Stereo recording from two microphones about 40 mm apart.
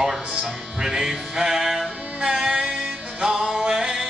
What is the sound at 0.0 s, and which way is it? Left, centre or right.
Music, centre.